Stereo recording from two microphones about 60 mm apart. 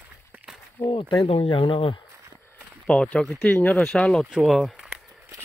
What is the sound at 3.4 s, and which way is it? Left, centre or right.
Speech, left.